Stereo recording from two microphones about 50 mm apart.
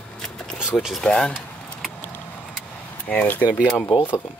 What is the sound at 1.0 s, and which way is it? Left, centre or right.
Speech, centre.